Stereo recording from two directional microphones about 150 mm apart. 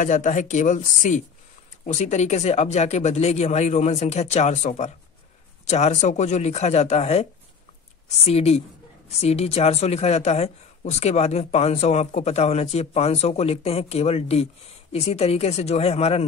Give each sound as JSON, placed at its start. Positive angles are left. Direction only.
{"t": 0.0, "sound": "speech", "side_deg": 55}